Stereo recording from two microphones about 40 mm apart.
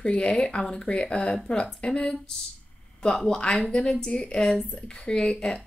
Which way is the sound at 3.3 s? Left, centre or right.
Left.